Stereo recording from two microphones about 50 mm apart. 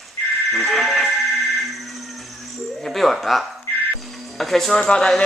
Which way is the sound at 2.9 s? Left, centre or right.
Centre.